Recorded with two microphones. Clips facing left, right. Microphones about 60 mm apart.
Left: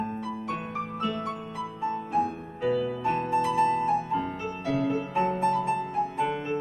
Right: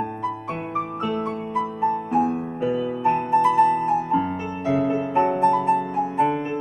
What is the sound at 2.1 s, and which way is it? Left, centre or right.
Music, centre.